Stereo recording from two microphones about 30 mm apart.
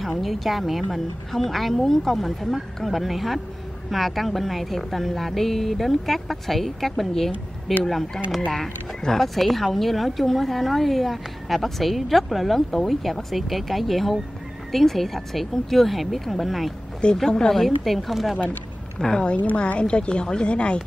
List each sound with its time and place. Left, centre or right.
0.0 s a woman's voice: centre
9.2 s a woman's voice: centre
17.0 s a woman's voice: left
17.5 s a woman's voice: centre
19.0 s a woman's voice: left
19.3 s a woman's voice: left